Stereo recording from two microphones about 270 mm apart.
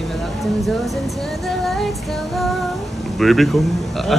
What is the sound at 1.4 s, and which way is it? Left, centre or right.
Speech, centre.